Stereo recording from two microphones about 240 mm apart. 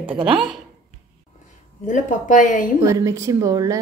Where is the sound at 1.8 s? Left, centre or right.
Left.